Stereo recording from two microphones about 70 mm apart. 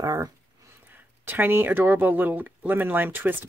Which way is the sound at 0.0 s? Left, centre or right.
Right.